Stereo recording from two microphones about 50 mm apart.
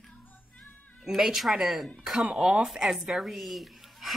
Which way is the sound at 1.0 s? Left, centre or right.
Centre.